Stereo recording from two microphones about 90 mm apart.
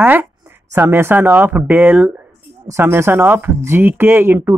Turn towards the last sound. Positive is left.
turn(degrees=-25)  # may be behind; listen again after turning